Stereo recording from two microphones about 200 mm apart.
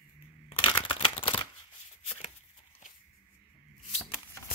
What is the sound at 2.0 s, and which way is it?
Shuffling cards, 30° left (ahead or behind).